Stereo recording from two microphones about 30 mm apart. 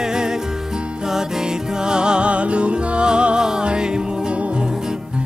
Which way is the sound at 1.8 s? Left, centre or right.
Right.